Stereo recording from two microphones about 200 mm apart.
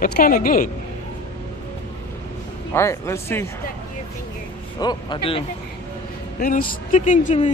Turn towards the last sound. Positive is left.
turn(degrees=40)  # may be behind; listen again after turning